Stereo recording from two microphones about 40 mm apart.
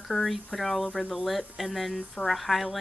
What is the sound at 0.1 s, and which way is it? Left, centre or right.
Speech, right.